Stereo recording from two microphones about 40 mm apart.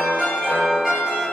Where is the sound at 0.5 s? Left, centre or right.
Centre.